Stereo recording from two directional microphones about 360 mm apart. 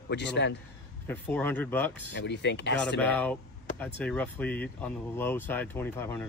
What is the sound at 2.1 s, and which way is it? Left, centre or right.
Speech, left.